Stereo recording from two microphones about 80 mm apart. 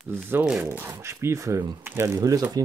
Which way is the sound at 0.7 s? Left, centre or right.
Right.